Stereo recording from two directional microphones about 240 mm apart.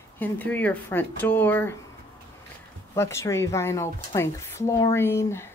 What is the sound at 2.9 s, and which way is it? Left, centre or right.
A woman's voice, centre.